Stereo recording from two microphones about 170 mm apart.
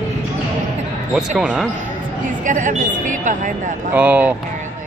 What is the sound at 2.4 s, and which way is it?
Speech, 50° right (ahead or behind).